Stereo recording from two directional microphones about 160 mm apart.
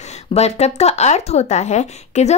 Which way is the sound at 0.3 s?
40° left (ahead or behind).